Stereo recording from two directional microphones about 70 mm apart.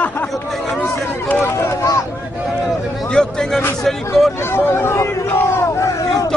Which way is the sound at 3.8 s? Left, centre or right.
Centre.